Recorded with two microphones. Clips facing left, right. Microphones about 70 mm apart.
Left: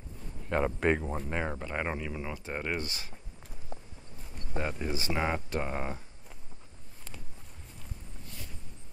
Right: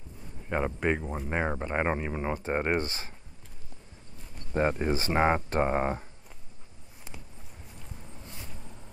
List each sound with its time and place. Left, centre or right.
0.5 s speech: centre
1.3 s speech: right
4.6 s speech: right